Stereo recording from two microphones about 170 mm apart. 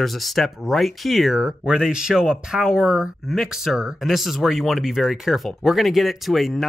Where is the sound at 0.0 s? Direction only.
Centre (ahead or behind).